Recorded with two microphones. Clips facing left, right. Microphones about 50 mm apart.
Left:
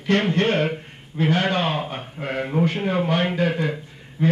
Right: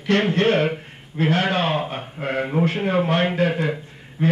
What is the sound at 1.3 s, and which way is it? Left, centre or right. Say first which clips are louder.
Speech: right 1 dB; centre.